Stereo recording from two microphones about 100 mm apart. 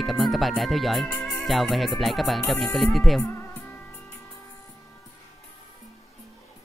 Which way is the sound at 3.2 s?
20° left (ahead or behind).